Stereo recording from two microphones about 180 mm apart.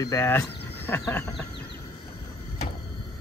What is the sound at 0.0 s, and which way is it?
Speech, 15° left (ahead or behind).